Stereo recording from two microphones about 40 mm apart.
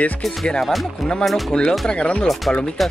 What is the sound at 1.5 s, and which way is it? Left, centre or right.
Speech, left.